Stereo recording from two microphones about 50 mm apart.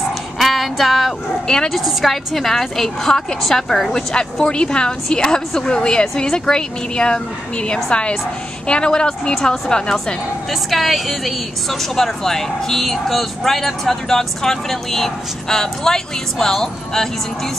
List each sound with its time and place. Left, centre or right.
0.4 s female singing: centre
1.7 s a woman's voice: centre
10.5 s a woman's voice: centre